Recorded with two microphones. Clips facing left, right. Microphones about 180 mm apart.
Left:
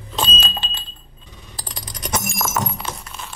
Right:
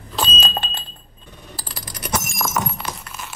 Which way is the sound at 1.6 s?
5° right (ahead or behind).